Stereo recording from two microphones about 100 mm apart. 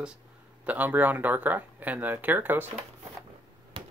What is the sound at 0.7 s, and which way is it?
Speech, 15° right (ahead or behind).